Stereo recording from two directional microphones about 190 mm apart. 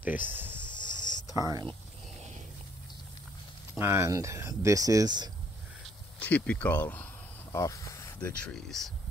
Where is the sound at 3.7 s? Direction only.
10° right (ahead or behind).